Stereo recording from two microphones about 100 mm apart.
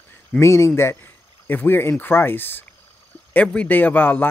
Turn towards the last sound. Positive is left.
turn(degrees=20)  # may be behind; listen again after turning